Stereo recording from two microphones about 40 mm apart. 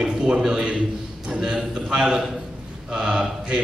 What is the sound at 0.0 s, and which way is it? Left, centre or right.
A man's voice, centre.